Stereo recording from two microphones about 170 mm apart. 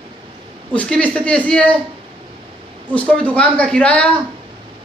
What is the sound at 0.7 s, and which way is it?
A man's voice, 5° left (ahead or behind).